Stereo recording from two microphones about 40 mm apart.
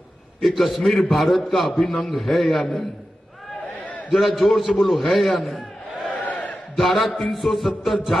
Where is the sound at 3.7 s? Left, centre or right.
Left.